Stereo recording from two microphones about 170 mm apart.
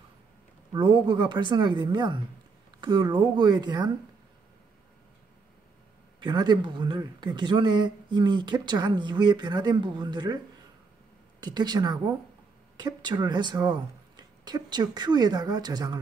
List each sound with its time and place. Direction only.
0.7 s speech: 25° right (ahead or behind)
6.2 s speech: 25° right (ahead or behind)
11.4 s speech: 25° right (ahead or behind)